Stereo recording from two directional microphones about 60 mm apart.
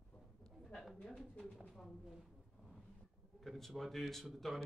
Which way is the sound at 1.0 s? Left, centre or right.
Centre.